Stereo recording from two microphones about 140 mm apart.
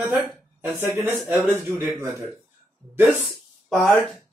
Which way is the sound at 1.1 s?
15° right (ahead or behind).